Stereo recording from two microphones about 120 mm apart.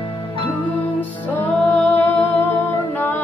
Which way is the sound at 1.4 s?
10° left (ahead or behind).